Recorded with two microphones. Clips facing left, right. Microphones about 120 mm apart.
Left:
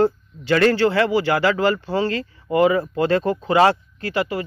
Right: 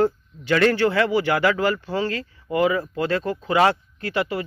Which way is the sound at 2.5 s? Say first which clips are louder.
Left 4 dB; 45° left (ahead or behind).